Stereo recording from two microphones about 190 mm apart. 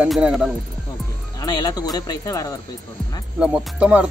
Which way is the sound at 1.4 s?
20° left (ahead or behind).